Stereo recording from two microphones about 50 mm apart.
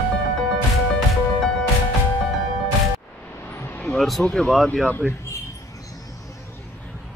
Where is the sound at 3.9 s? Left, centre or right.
Centre.